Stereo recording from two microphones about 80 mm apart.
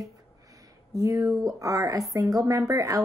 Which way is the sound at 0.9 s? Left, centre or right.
Right.